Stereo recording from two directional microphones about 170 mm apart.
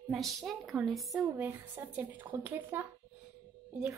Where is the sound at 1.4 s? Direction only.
10° right (ahead or behind).